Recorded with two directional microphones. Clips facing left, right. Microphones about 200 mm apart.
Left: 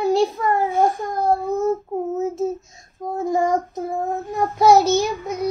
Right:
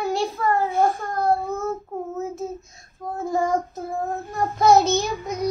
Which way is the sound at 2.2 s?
25° left (ahead or behind).